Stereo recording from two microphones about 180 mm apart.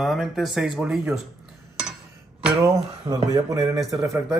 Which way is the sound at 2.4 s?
20° right (ahead or behind).